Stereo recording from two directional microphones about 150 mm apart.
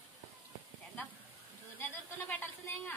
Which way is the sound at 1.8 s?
15° left (ahead or behind).